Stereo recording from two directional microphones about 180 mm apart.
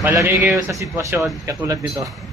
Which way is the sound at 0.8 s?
15° right (ahead or behind).